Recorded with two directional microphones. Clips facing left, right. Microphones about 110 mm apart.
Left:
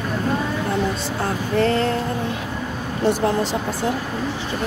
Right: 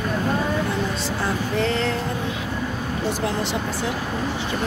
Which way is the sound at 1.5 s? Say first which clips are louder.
Left 6 dB; 50° left (ahead or behind).